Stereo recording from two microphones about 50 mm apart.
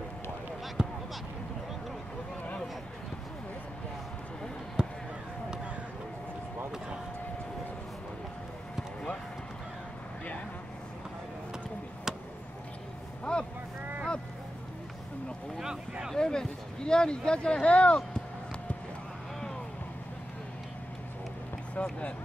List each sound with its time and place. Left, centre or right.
0.8 s basketball bounce: centre
4.8 s a sound: centre
13.2 s vehicle: left
15.6 s boat: centre
16.2 s a sound: centre
21.8 s boat: left